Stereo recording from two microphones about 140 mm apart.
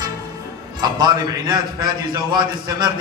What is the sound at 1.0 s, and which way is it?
A man's voice, 30° right (ahead or behind).